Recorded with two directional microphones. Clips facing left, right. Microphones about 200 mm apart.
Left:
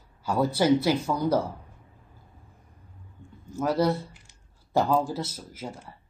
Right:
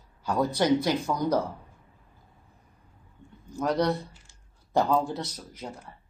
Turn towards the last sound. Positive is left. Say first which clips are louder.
# left 2 dB
turn(degrees=5)  # may be behind; listen again after turning